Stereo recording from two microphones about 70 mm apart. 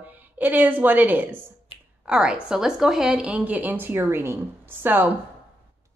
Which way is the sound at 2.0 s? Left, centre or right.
Centre.